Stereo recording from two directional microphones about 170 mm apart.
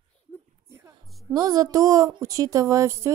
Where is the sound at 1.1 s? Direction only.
Centre (ahead or behind).